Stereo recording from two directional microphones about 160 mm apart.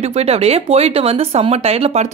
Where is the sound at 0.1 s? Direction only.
40° right (ahead or behind).